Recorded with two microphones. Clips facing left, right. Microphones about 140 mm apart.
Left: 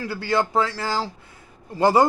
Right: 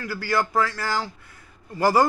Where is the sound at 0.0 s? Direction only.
25° left (ahead or behind).